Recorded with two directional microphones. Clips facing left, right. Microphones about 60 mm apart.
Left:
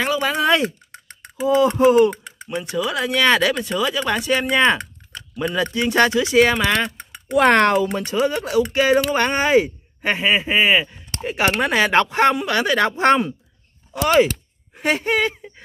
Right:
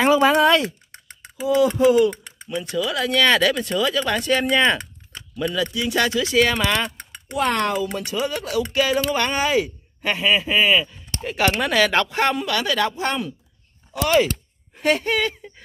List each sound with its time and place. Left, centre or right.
0.2 s speech: centre
1.8 s speech: left
2.4 s speech: left
5.4 s speech: left
6.2 s speech: left
6.5 s speech: centre
7.3 s speech: left
8.0 s speech: left
13.0 s speech: left
13.9 s speech: left
14.7 s a sound: centre